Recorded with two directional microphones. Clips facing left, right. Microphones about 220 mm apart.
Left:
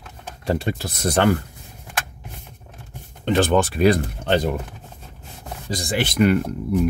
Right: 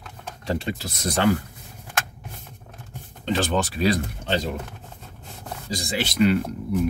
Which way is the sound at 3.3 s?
55° left (ahead or behind).